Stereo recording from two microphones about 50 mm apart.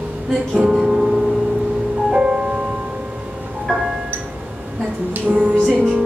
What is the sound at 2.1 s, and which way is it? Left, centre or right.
Music, centre.